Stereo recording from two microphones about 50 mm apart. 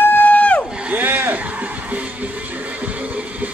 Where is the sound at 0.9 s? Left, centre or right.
Right.